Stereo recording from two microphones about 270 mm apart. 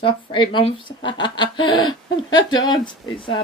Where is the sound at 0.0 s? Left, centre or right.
Centre.